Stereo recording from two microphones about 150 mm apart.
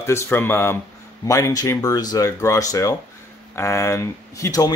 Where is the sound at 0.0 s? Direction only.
15° left (ahead or behind).